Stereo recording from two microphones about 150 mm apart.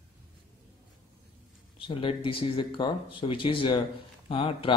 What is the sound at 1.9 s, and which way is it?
Speech, 35° left (ahead or behind).